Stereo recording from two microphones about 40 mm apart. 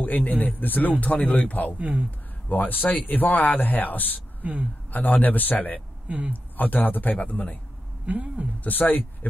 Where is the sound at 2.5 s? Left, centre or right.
Left.